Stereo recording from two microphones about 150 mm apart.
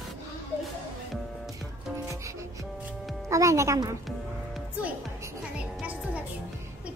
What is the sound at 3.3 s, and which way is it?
Speech, 20° right (ahead or behind).